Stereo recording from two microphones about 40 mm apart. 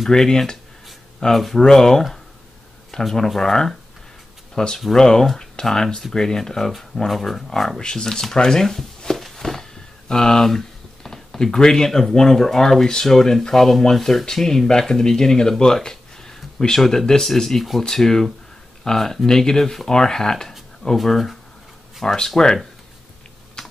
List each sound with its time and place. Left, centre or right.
0.1 s speech: centre
7.1 s speech: centre
7.8 s speech: centre
22.0 s speech: centre
23.6 s typing: centre